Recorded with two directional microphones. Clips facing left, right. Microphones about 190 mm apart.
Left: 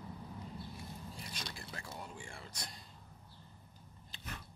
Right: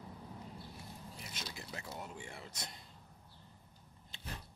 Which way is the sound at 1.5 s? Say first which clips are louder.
Right 1 dB; 20° right (ahead or behind).